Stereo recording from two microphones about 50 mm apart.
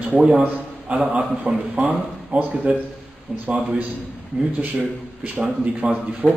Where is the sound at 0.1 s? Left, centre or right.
Right.